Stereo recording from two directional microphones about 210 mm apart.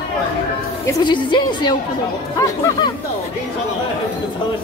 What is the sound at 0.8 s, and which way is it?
A woman's voice, 20° left (ahead or behind).